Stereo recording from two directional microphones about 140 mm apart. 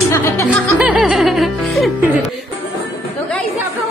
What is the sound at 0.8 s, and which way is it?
Music, 5° right (ahead or behind).